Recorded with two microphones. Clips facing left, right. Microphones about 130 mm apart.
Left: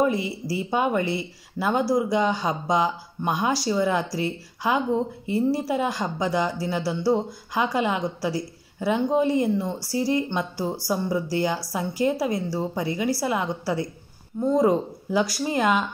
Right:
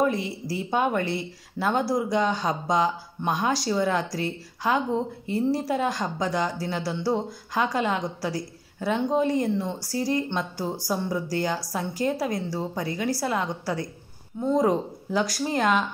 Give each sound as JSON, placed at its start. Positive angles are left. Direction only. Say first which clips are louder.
{"t": 0.0, "sound": "a woman's voice", "louder": "left 2 dB", "side_deg": 5}